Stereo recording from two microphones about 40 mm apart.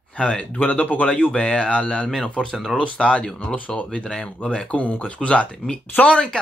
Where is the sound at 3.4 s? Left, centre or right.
Left.